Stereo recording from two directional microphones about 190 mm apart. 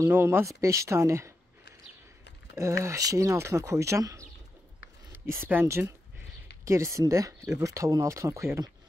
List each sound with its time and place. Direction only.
0.0 s speech: 10° right (ahead or behind)
2.8 s speech: 15° right (ahead or behind)